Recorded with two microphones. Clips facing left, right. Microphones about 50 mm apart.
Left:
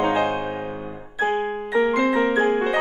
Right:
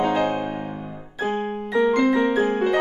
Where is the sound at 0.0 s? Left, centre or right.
Centre.